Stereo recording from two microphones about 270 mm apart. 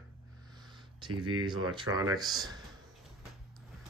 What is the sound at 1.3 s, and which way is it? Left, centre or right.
Speech, centre.